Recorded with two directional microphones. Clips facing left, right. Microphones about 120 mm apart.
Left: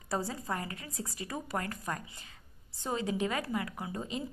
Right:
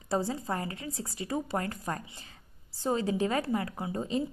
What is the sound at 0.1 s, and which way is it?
A woman's voice, 25° right (ahead or behind).